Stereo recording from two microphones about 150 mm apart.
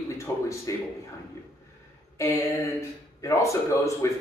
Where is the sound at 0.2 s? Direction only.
20° left (ahead or behind).